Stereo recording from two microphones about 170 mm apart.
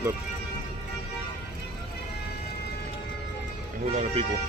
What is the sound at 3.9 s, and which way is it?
Speech, 35° right (ahead or behind).